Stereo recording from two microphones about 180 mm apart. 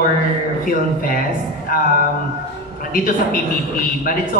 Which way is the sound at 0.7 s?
50° left (ahead or behind).